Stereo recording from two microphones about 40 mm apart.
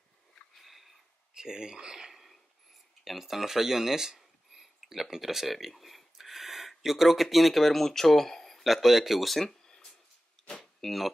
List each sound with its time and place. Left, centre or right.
0.6 s sniff: centre
1.3 s speech: centre
2.0 s a sound: centre
3.0 s speech: centre
8.6 s speech: centre
10.6 s a sound: centre